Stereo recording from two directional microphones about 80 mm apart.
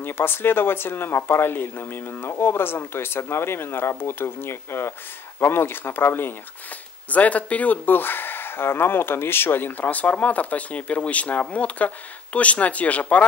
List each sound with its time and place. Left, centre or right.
0.0 s speech: left